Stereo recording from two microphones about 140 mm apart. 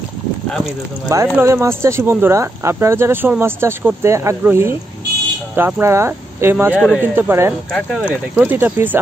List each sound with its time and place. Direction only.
1.0 s speech: 20° right (ahead or behind)